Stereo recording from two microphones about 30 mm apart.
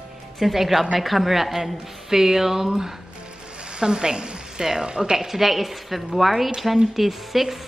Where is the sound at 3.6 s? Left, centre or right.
Right.